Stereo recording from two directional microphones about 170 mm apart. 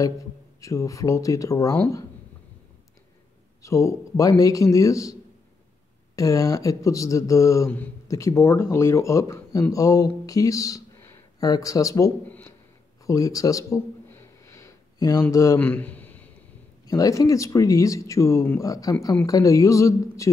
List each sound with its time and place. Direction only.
0.6 s speech: 20° left (ahead or behind)
3.6 s speech: 20° left (ahead or behind)
6.1 s speech: 20° left (ahead or behind)
13.0 s a sound: 20° left (ahead or behind)
15.3 s a man's voice: 15° left (ahead or behind)